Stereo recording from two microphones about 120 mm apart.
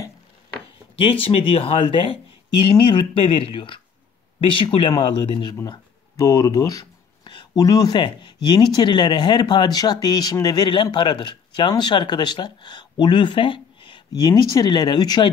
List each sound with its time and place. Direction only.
1.2 s speech: 50° left (ahead or behind)